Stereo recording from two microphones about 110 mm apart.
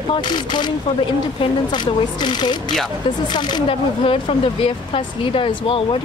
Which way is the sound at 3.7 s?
55° left (ahead or behind).